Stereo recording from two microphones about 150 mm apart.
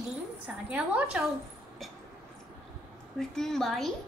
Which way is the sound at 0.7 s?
10° right (ahead or behind).